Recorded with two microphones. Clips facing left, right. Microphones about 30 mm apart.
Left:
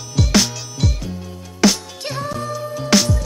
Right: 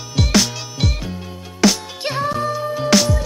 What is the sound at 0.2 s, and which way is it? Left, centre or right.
Music, centre.